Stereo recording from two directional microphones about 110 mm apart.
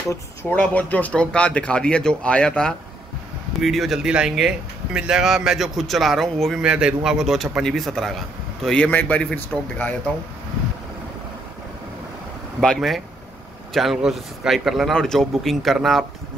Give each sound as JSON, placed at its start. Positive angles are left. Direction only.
{"t": 0.1, "sound": "speech", "side_deg": 25}
{"t": 6.6, "sound": "speech", "side_deg": -10}
{"t": 12.6, "sound": "speech", "side_deg": 0}